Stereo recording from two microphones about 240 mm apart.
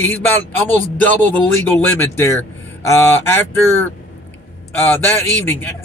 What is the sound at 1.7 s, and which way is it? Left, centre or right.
Speech, centre.